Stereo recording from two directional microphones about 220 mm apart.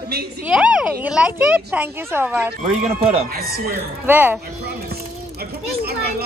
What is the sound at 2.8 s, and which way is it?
Speech, 30° right (ahead or behind).